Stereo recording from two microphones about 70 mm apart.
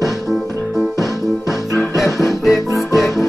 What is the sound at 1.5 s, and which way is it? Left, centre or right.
Music, left.